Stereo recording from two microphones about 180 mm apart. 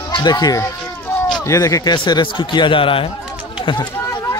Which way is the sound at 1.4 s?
20° left (ahead or behind).